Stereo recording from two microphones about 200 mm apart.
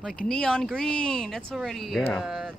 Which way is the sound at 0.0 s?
5° left (ahead or behind).